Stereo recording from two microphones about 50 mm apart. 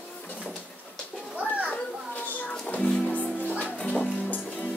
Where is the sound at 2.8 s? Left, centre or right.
Centre.